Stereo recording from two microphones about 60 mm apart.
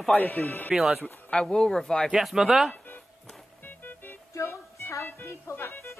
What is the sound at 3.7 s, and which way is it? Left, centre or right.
Music, left.